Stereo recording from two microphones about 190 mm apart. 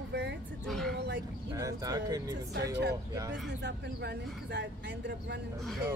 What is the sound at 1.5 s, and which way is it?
Speech, 20° right (ahead or behind).